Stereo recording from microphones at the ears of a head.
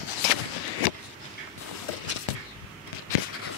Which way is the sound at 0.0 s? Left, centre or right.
Left.